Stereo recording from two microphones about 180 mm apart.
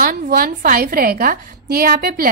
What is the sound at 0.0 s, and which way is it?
A woman's voice, 55° right (ahead or behind).